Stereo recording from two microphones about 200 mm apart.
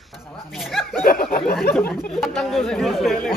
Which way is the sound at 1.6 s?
5° left (ahead or behind).